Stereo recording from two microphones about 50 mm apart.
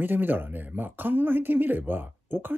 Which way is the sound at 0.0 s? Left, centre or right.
Right.